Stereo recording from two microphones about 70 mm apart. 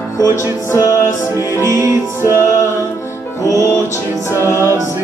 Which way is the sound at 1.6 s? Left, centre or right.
Right.